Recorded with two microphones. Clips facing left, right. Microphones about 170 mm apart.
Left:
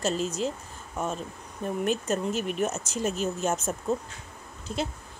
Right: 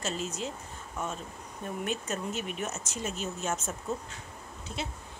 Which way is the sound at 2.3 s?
Centre (ahead or behind).